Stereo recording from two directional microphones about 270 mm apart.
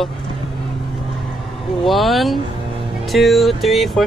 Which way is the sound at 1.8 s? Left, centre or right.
Centre.